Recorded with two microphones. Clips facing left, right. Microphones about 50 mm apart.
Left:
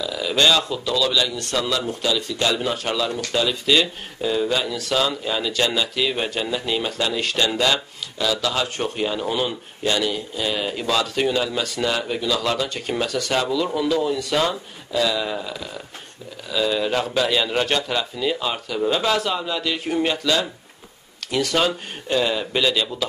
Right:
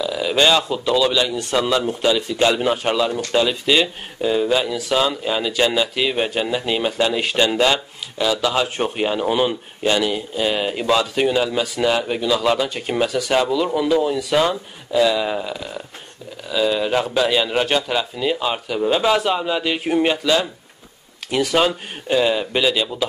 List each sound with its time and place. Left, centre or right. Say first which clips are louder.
0.0 s a man's voice: right 2 dB; centre